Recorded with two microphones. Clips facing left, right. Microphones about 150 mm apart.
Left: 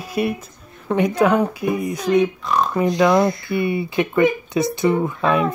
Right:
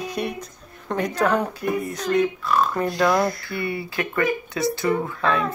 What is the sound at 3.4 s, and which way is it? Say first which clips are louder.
Speech: left 7 dB; 20° left (ahead or behind).